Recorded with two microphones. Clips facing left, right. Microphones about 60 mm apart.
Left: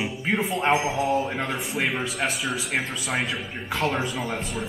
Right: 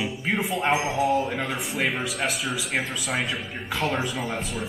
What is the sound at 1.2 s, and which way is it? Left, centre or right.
Speech, centre.